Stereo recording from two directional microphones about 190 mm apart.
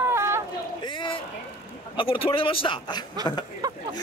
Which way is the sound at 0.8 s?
25° left (ahead or behind).